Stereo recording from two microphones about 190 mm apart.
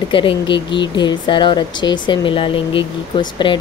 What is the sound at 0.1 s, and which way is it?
Speech, 25° left (ahead or behind).